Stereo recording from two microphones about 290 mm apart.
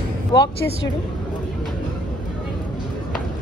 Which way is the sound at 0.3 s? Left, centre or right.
Centre.